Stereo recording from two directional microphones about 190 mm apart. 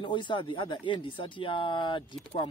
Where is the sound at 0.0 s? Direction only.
25° left (ahead or behind).